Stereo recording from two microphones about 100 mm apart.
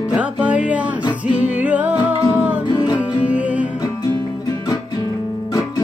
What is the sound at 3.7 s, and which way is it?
Music, 40° left (ahead or behind).